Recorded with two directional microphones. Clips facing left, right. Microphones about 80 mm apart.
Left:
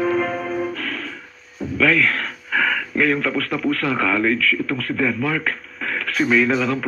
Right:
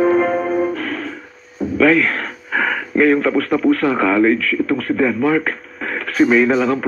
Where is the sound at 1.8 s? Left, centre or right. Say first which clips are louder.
Right 4 dB; right.